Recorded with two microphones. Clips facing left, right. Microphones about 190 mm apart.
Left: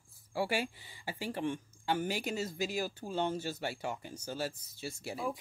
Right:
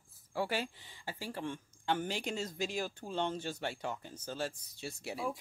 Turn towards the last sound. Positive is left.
turn(degrees=0)  # may be behind; listen again after turning